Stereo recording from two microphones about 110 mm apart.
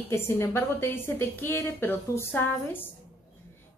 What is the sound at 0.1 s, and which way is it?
A woman's voice, 25° left (ahead or behind).